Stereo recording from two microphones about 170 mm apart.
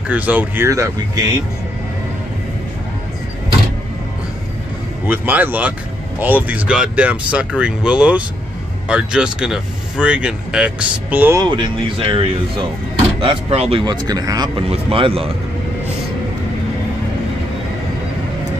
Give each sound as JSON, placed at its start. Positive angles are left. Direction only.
{"t": 0.1, "sound": "speech", "side_deg": -10}
{"t": 5.0, "sound": "speech", "side_deg": -10}
{"t": 11.4, "sound": "speech", "side_deg": -25}
{"t": 14.7, "sound": "speech", "side_deg": -35}